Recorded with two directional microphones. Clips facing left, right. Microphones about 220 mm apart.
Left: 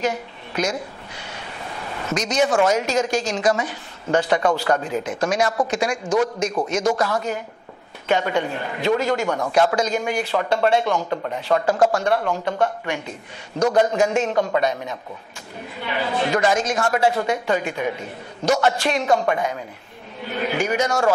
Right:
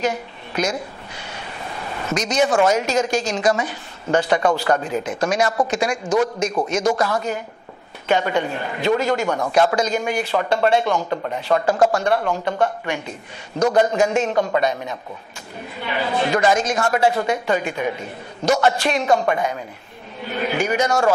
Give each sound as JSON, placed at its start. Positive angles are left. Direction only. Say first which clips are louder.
{"t": 0.0, "sound": "a woman's voice", "louder": "right 1 dB", "side_deg": -15}
{"t": 2.1, "sound": "a man's voice", "louder": "right 1 dB", "side_deg": -10}
{"t": 13.6, "sound": "a man's voice", "louder": "right 1 dB", "side_deg": -30}
{"t": 13.8, "sound": "a man's voice", "louder": "right 1 dB", "side_deg": -10}